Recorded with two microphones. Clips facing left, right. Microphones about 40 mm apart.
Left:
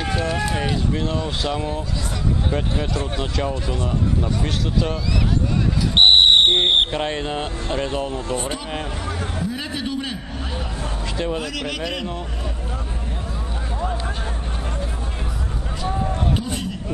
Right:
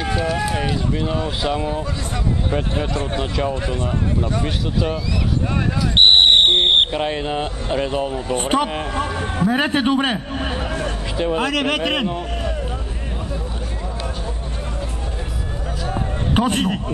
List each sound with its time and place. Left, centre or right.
0.0 s speech: centre
3.2 s speech: centre
3.5 s speech: right
4.2 s speech: centre
5.9 s a sound: centre
6.9 s speech: centre
8.4 s a man's voice: right
15.9 s a sound: right